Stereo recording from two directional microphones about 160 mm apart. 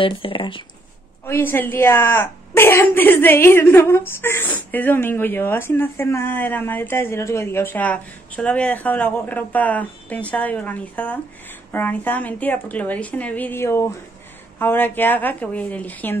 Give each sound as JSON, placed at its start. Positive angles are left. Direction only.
{"t": 0.0, "sound": "speech", "side_deg": 35}
{"t": 1.2, "sound": "speech", "side_deg": 15}